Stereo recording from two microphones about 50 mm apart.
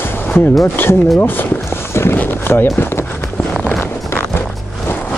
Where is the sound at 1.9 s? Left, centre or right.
Left.